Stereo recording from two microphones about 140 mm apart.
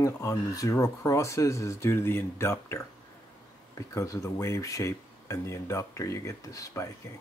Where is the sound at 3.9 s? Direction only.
20° left (ahead or behind).